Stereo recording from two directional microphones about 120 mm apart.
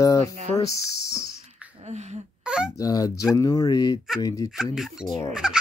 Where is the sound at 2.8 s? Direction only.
30° left (ahead or behind).